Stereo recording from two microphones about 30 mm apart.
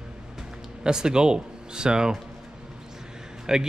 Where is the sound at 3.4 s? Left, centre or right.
Right.